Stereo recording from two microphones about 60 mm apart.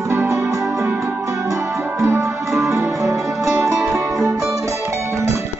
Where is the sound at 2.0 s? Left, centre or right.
Right.